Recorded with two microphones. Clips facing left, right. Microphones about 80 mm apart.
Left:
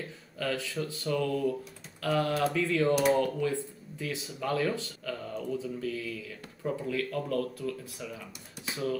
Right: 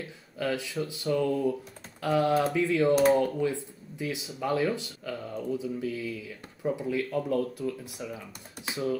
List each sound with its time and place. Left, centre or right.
0.4 s speech: centre